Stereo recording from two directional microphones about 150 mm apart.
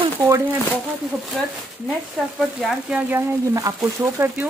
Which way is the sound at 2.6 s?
5° right (ahead or behind).